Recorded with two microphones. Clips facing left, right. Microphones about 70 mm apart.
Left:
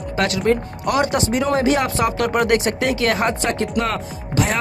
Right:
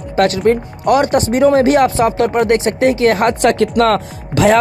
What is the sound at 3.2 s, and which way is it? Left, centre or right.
Speech, right.